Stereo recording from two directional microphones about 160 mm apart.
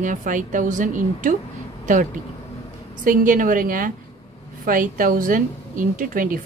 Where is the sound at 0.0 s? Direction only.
55° right (ahead or behind).